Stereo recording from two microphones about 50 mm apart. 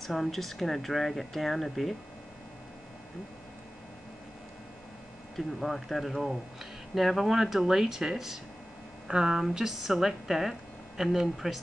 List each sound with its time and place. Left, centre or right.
0.0 s speech: centre
5.3 s a woman's voice: centre